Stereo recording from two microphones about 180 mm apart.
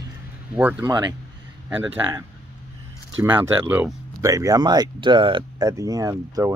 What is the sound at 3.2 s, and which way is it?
Speech, 10° right (ahead or behind).